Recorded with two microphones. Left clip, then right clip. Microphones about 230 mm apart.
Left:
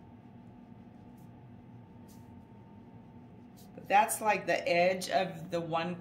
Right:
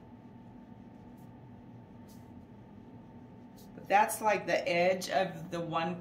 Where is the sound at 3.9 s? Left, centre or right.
Left.